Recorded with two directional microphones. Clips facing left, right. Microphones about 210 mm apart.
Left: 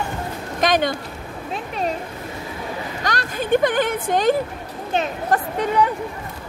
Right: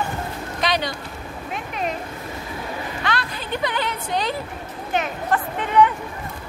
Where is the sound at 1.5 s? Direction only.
35° left (ahead or behind).